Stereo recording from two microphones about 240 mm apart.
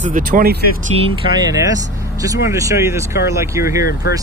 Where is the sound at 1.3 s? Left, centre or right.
Centre.